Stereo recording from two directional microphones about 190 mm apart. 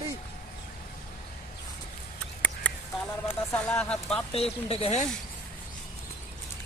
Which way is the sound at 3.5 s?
5° left (ahead or behind).